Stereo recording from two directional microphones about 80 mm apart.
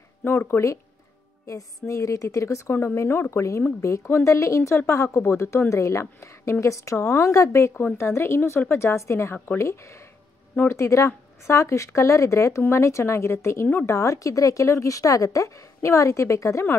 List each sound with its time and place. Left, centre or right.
0.2 s speech: left